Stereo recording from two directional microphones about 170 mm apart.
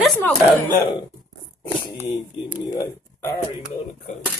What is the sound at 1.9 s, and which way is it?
Speech, 35° left (ahead or behind).